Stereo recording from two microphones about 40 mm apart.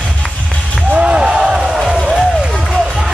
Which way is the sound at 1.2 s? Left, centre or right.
Centre.